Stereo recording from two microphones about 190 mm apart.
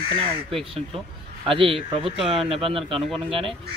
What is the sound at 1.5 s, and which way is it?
Speech, 30° right (ahead or behind).